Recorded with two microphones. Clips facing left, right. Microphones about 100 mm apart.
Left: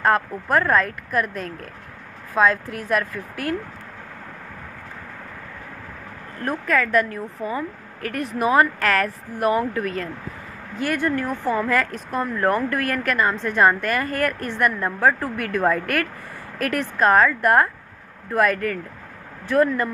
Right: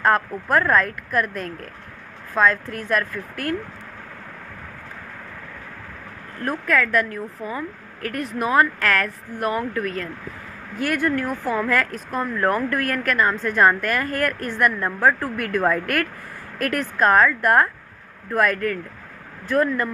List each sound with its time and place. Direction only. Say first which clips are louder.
0.0 s speech: even; centre (ahead or behind)
6.4 s speech: even; 5° left (ahead or behind)